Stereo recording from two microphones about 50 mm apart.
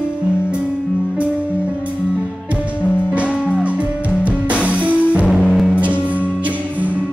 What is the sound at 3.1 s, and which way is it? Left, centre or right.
Music, right.